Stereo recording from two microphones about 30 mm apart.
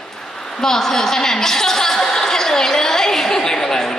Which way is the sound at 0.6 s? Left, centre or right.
Centre.